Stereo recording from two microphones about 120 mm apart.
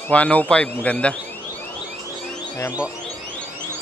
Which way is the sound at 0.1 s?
10° left (ahead or behind).